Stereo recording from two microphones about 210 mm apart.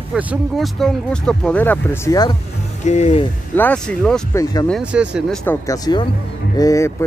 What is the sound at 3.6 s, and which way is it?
Speech, 5° left (ahead or behind).